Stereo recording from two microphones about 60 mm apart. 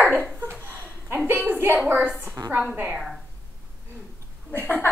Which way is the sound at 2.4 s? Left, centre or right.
Right.